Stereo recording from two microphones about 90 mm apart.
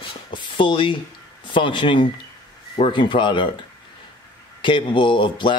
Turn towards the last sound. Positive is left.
turn(degrees=65)  # may be behind; listen again after turning